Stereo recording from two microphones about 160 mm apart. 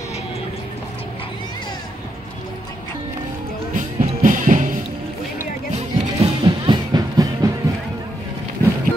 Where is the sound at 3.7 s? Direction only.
55° right (ahead or behind).